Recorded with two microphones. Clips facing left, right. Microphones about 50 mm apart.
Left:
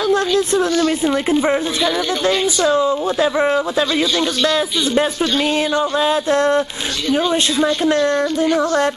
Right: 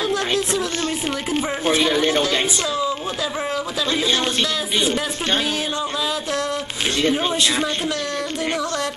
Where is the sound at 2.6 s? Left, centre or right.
Left.